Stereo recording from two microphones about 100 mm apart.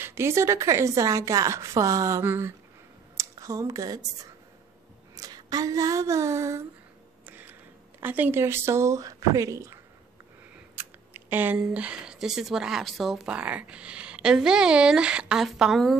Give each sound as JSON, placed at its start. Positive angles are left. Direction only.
{"t": 0.0, "sound": "speech", "side_deg": -25}
{"t": 2.2, "sound": "speech", "side_deg": -20}
{"t": 3.2, "sound": "speech", "side_deg": -30}
{"t": 7.2, "sound": "a sound", "side_deg": -20}
{"t": 8.0, "sound": "speech", "side_deg": -20}
{"t": 10.8, "sound": "chewing", "side_deg": -20}
{"t": 11.5, "sound": "speech", "side_deg": -10}
{"t": 13.3, "sound": "speech", "side_deg": -15}